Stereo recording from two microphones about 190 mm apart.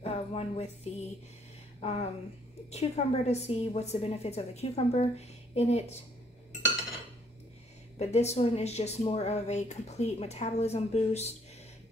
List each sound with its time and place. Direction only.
0.0 s music: 30° left (ahead or behind)
1.8 s speech: 35° left (ahead or behind)
8.0 s speech: 35° left (ahead or behind)